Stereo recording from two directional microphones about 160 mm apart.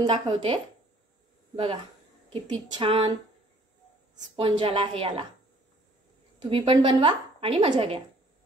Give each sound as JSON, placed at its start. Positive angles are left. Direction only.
{"t": 0.0, "sound": "a woman's voice", "side_deg": -35}
{"t": 2.3, "sound": "a woman's voice", "side_deg": -35}
{"t": 4.4, "sound": "a woman's voice", "side_deg": -35}
{"t": 6.5, "sound": "a woman's voice", "side_deg": -35}